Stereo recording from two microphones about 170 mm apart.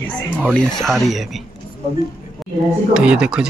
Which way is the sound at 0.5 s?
Centre (ahead or behind).